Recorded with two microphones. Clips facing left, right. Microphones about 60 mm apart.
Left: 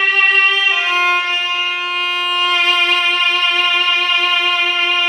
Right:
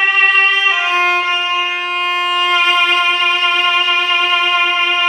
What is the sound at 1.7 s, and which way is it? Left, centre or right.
Wind instrument, right.